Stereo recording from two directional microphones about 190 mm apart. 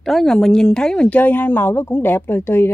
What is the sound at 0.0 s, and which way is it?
Speech, centre (ahead or behind).